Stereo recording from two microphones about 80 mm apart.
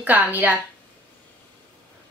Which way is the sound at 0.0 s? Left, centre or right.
Right.